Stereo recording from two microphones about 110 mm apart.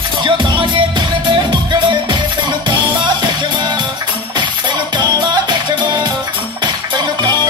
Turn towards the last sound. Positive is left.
turn(degrees=-40)  # may be behind; listen again after turning